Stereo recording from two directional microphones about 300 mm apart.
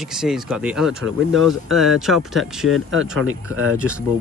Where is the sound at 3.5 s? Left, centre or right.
Right.